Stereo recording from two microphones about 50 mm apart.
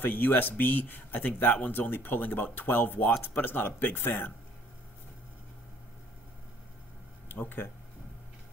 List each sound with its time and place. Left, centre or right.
0.0 s speech: left
7.3 s speech: left